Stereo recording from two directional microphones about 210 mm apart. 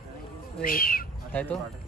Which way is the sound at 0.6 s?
45° left (ahead or behind).